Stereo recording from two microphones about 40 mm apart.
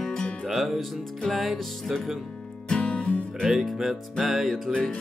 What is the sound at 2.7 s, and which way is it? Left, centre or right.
Music, left.